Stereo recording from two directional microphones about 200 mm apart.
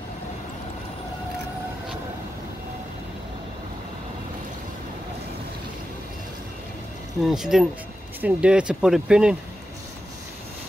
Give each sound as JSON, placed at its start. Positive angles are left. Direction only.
{"t": 7.2, "sound": "speech", "side_deg": 0}